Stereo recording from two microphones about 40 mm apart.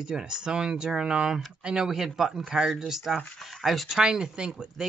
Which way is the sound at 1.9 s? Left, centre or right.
Centre.